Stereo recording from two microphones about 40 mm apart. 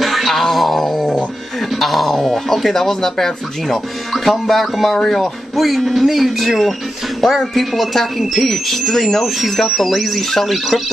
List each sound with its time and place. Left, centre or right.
0.0 s music: centre
1.8 s speech: centre
4.9 s speech: centre
5.6 s speech: centre